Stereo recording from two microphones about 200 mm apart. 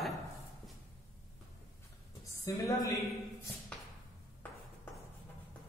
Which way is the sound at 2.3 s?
15° left (ahead or behind).